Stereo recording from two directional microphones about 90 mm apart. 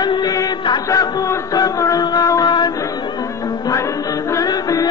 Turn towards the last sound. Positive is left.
turn(degrees=40)  # may be behind; listen again after turning